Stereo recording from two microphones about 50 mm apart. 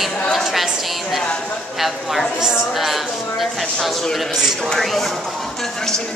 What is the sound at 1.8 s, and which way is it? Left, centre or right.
A woman's voice, centre.